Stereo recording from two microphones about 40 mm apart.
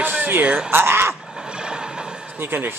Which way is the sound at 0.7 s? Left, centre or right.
Right.